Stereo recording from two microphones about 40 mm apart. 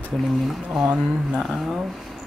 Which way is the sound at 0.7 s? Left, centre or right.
Right.